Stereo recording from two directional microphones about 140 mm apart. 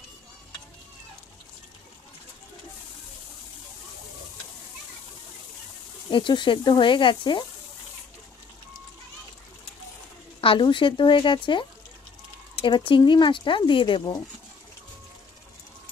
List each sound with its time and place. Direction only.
6.0 s speech: 35° left (ahead or behind)
10.4 s speech: 40° left (ahead or behind)